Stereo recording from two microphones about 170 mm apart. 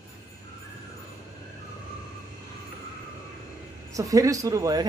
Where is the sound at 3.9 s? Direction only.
20° right (ahead or behind).